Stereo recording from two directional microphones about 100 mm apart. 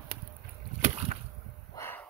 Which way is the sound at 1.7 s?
25° left (ahead or behind).